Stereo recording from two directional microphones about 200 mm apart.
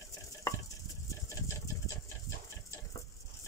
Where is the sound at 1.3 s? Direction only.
15° left (ahead or behind).